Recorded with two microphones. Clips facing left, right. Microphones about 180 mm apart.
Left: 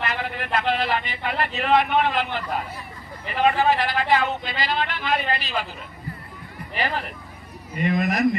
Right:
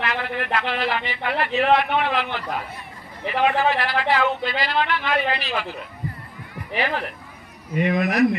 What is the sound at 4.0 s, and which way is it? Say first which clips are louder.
Speech: right 1 dB; 55° right (ahead or behind).